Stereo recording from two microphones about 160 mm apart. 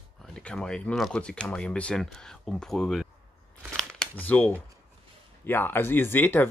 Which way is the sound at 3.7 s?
10° left (ahead or behind).